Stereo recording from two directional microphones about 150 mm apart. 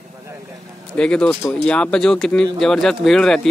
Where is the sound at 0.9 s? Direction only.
5° left (ahead or behind).